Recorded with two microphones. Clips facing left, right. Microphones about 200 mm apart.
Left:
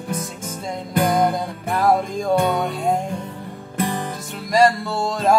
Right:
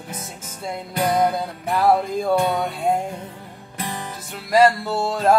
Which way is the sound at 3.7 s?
50° left (ahead or behind).